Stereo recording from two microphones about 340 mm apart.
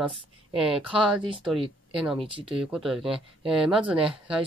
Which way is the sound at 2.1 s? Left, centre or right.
Centre.